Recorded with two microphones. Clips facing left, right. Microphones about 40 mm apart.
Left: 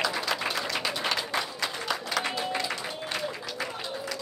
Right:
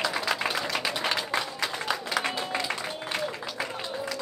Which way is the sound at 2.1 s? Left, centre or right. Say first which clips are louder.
Even; centre.